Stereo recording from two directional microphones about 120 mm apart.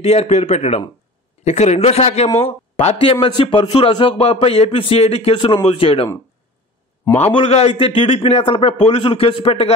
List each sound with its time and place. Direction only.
0.0 s a man's voice: 60° left (ahead or behind)
7.3 s a man's voice: 55° left (ahead or behind)